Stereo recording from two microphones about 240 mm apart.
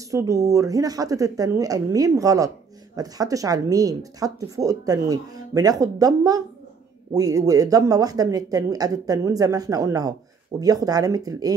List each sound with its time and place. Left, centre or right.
0.1 s speech: centre